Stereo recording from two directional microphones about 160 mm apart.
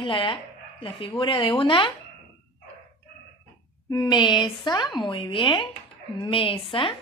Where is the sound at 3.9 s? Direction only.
25° left (ahead or behind).